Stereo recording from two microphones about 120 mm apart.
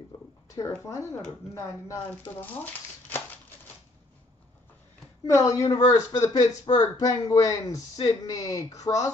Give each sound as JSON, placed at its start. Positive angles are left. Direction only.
{"t": 0.6, "sound": "speech", "side_deg": 25}
{"t": 5.2, "sound": "speech", "side_deg": 25}